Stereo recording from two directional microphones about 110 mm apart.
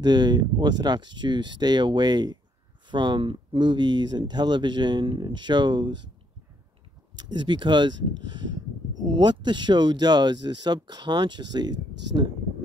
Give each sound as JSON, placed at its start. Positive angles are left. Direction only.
{"t": 0.0, "sound": "speech", "side_deg": -40}
{"t": 7.2, "sound": "speech", "side_deg": -45}